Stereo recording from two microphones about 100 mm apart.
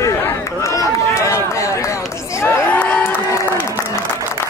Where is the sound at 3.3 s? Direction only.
25° left (ahead or behind).